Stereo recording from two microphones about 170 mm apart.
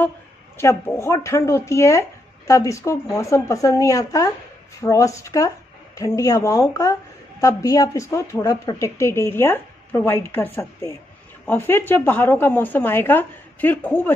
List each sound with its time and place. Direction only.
0.6 s a woman's voice: 15° left (ahead or behind)